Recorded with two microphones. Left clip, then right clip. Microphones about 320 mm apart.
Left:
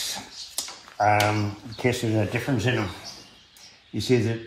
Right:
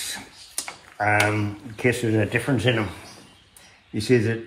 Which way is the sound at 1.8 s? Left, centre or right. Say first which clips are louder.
Right 3 dB; centre.